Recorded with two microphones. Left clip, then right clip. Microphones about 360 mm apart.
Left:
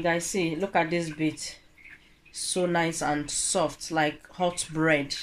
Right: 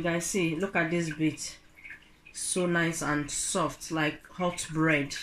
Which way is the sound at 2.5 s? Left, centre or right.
Centre.